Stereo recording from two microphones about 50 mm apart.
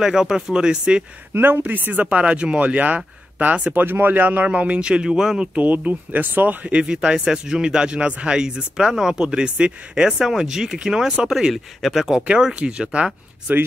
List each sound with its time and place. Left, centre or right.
0.0 s speech: centre
1.3 s speech: right
3.8 s a man's voice: right; by 5.5 s centre
5.5 s speech: right
6.8 s speech: centre
8.5 s speech: centre
11.2 s speech: centre
12.5 s a man's voice: centre